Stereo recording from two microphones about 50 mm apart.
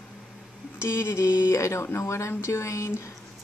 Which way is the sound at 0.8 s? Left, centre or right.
Left.